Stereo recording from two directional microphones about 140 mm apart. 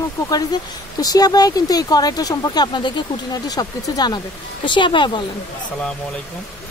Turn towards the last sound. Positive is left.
turn(degrees=35)  # may be behind; listen again after turning